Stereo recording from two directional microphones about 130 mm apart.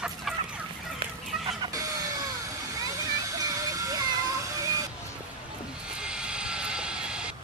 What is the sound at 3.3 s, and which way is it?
Music, 30° right (ahead or behind).